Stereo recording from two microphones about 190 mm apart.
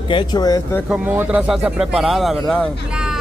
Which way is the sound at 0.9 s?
5° right (ahead or behind).